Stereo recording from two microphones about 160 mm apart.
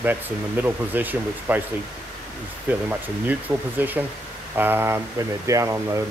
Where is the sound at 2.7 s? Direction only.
10° right (ahead or behind).